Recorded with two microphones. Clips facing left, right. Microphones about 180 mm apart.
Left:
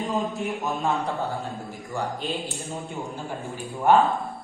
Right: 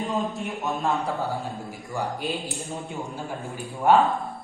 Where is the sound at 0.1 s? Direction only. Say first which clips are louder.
Left 1 dB; centre (ahead or behind).